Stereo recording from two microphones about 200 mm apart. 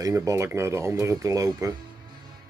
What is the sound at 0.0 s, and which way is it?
Speech, 15° right (ahead or behind).